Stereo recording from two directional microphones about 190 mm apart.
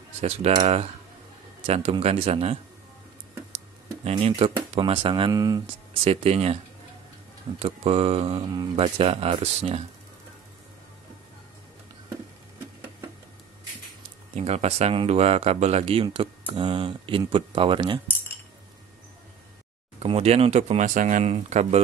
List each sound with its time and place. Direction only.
0.2 s speech: 35° right (ahead or behind)
4.0 s speech: 35° right (ahead or behind)
6.0 s speech: 30° right (ahead or behind)
14.3 s speech: 35° right (ahead or behind)
20.0 s speech: 30° right (ahead or behind)